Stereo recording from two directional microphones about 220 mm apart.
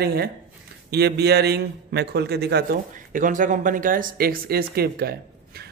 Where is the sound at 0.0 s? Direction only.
45° right (ahead or behind).